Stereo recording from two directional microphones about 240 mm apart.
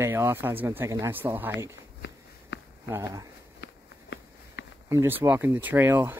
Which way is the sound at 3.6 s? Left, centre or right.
Left.